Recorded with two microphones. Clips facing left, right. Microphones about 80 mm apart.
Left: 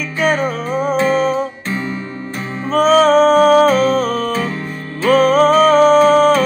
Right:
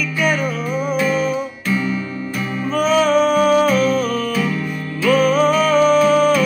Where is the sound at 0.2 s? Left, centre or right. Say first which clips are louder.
Left 4 dB; left.